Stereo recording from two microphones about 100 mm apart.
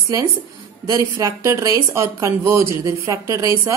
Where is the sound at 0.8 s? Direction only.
30° right (ahead or behind).